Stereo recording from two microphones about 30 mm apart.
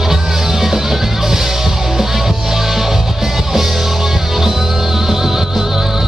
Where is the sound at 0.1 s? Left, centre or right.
Centre.